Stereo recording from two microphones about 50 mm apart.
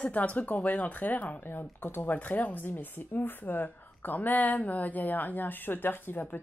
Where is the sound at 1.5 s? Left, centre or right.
Left.